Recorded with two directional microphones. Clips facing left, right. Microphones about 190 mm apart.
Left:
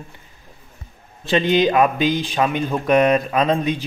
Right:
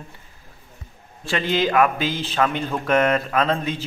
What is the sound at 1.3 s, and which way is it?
Speech, 20° left (ahead or behind).